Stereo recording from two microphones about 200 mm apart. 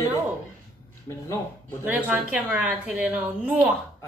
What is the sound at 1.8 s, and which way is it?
A woman's voice, 10° right (ahead or behind).